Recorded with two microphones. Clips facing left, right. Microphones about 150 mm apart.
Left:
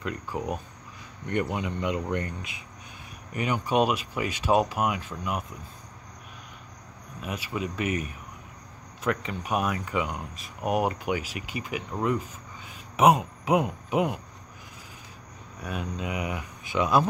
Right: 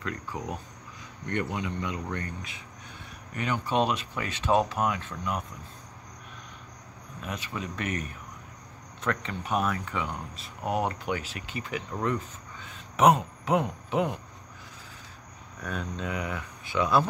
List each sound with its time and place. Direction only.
0.3 s speech: 10° left (ahead or behind)
7.2 s speech: 10° left (ahead or behind)
15.6 s speech: 10° left (ahead or behind)